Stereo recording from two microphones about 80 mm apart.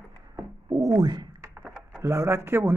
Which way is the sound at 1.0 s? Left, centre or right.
Right.